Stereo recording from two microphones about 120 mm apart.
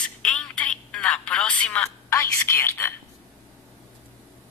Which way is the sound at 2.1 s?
20° left (ahead or behind).